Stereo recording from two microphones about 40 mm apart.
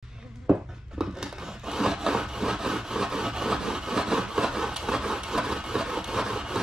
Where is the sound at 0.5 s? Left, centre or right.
Centre.